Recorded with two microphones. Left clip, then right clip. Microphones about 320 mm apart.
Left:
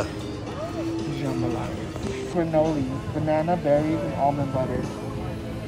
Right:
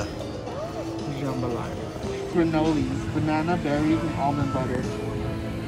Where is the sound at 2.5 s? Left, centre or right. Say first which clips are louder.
Left 2 dB; left.